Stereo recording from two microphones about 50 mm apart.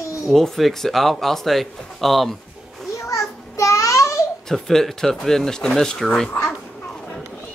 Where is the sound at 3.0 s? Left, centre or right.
Left.